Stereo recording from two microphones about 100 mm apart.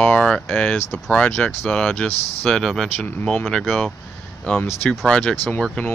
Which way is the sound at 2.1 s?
90° left.